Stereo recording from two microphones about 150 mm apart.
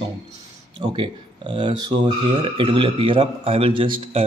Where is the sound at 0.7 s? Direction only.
35° right (ahead or behind).